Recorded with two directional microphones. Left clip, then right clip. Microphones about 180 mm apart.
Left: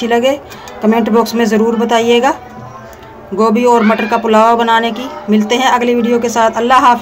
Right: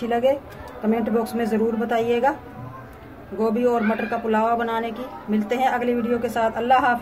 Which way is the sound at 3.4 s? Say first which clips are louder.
Left 11 dB; 40° left (ahead or behind).